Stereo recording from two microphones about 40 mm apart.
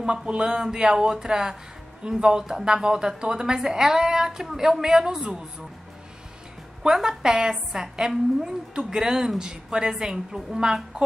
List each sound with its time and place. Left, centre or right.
0.0 s a woman's voice: right
6.8 s a woman's voice: centre